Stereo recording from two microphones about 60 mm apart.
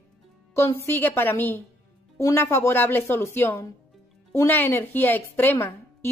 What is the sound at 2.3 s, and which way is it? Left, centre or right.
A woman's voice, left.